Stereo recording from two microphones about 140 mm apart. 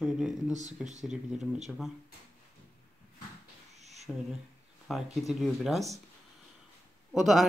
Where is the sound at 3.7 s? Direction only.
50° right (ahead or behind).